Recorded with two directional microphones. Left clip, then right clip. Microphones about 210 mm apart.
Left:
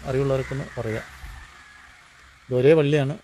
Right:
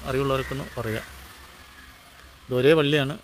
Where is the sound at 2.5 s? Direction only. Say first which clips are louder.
Left 2 dB; centre (ahead or behind).